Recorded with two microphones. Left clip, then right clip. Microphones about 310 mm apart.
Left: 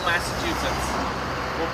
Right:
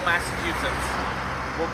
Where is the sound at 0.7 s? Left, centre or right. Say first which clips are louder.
Left 1 dB; left.